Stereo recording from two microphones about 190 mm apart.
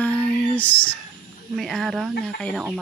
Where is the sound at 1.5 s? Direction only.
Centre (ahead or behind).